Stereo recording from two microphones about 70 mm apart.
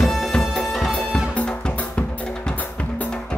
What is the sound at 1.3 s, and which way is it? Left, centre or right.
Drum kit, centre.